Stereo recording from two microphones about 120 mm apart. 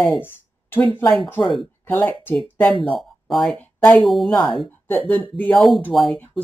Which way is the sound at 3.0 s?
Centre (ahead or behind).